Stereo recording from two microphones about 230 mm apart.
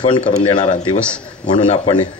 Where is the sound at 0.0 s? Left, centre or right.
Left.